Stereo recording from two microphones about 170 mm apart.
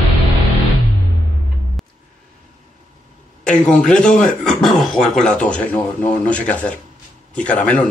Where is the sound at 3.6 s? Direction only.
5° left (ahead or behind).